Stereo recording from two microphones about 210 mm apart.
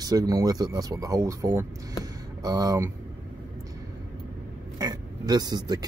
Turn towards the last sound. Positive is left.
turn(degrees=-20)  # may be behind; listen again after turning